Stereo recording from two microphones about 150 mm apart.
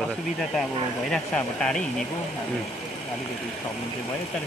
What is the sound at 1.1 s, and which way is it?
Speech, 5° left (ahead or behind).